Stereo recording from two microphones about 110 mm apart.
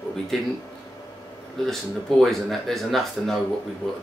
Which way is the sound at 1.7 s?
Centre (ahead or behind).